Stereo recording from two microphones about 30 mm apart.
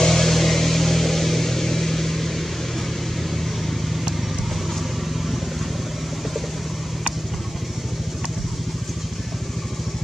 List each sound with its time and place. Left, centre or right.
0.0 s vehicle: centre